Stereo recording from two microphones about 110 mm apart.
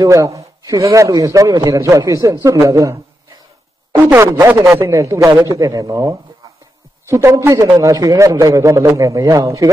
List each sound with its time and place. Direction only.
0.0 s a man's voice: 30° right (ahead or behind)